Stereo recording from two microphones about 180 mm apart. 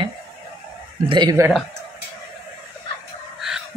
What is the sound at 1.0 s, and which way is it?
Speech, 25° right (ahead or behind).